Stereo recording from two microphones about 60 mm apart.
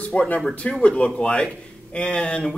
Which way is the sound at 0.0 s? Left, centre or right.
Left.